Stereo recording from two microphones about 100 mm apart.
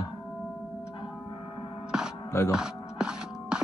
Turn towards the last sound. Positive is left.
turn(degrees=-5)  # may be behind; listen again after turning